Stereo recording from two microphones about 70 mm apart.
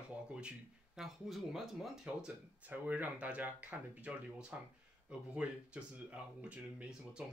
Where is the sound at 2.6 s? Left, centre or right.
Right.